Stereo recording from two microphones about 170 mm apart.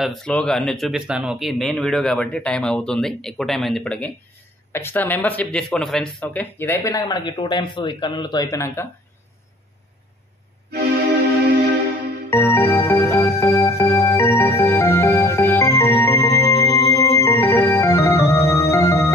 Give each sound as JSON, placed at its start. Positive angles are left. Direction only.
{"t": 0.0, "sound": "speech", "side_deg": 0}
{"t": 12.3, "sound": "music", "side_deg": 15}
{"t": 16.9, "sound": "organ", "side_deg": 15}